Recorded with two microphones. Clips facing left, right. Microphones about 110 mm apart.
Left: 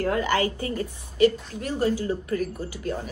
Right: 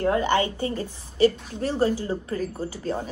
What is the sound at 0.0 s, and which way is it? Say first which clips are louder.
A woman's voice: right 2 dB; 25° right (ahead or behind).